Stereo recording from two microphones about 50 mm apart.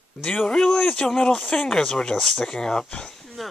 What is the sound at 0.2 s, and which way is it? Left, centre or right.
Speech, centre.